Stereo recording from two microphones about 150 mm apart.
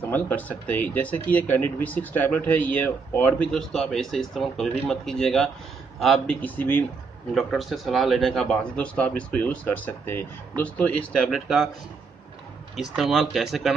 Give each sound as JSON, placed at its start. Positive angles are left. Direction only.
{"t": 0.1, "sound": "speech", "side_deg": 10}
{"t": 7.3, "sound": "speech", "side_deg": 0}
{"t": 12.7, "sound": "speech", "side_deg": 0}